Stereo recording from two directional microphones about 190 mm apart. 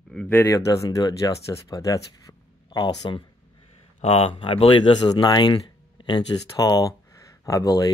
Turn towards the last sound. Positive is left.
turn(degrees=20)  # may be behind; listen again after turning